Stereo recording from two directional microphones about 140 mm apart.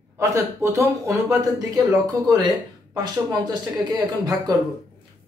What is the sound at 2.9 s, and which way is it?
A man's voice, 30° right (ahead or behind).